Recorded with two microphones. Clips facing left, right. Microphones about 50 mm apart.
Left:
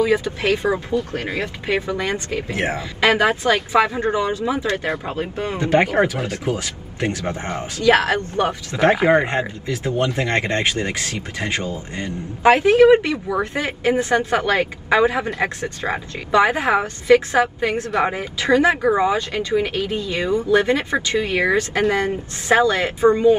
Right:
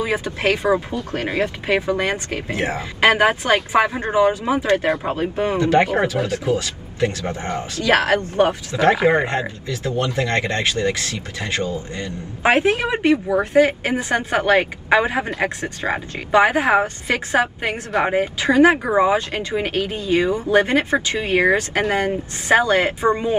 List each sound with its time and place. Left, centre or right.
0.0 s a woman's voice: right
5.6 s speech: left
7.8 s speech: right
8.7 s speech: left
12.4 s a woman's voice: right
19.3 s a woman's voice: right